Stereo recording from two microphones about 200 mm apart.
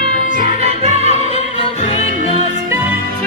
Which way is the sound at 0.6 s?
30° right (ahead or behind).